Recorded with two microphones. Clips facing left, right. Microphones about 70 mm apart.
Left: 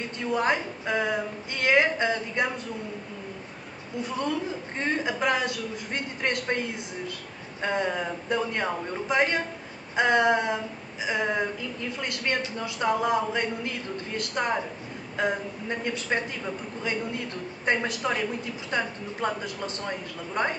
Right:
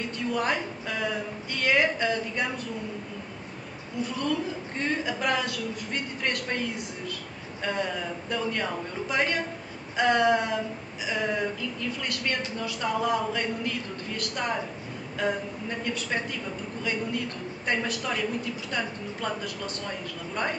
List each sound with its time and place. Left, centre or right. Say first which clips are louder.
0.3 s a man's voice: left 3 dB; left
4.7 s a man's voice: left 2 dB; left
7.6 s a man's voice: left 3 dB; left
17.6 s a man's voice: left 3 dB; left